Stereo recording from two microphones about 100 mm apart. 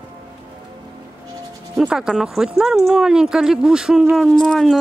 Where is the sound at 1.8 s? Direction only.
5° right (ahead or behind).